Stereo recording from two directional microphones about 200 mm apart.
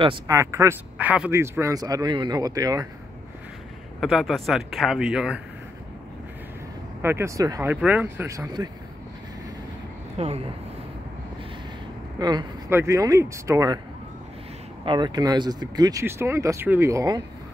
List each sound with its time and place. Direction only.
0.0 s speech: 20° right (ahead or behind)
4.0 s a man's voice: centre (ahead or behind)
7.0 s speech: 10° right (ahead or behind)
10.1 s speech: 30° right (ahead or behind)
12.2 s speech: 20° right (ahead or behind)
14.9 s speech: 20° right (ahead or behind)